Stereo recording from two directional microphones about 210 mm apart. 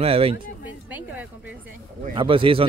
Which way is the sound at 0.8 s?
5° right (ahead or behind).